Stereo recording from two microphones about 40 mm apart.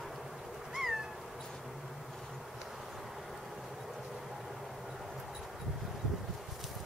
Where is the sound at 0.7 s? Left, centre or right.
Centre.